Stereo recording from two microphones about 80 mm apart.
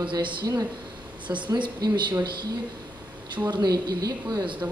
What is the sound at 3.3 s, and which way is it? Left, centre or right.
Speech, right.